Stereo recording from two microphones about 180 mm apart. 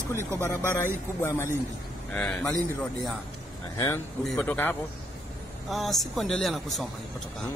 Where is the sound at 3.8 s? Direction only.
20° left (ahead or behind); by 6.8 s centre (ahead or behind).